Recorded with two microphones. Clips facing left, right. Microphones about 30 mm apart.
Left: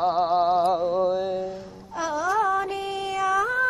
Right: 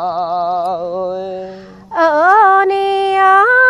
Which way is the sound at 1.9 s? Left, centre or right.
Right.